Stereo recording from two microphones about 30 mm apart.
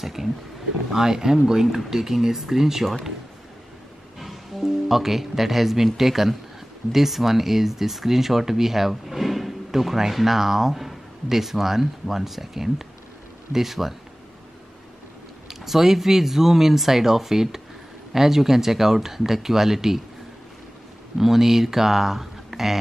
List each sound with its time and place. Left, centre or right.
0.0 s speech: centre
0.9 s speech: centre
4.2 s speech: centre
15.6 s speech: centre
21.2 s speech: centre